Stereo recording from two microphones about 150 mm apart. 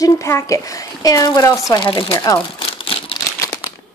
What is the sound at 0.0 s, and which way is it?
A woman's voice, 20° left (ahead or behind).